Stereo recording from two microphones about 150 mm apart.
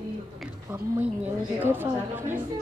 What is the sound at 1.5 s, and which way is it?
Speech, 15° right (ahead or behind).